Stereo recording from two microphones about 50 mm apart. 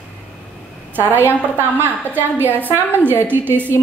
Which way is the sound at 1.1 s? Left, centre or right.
Left.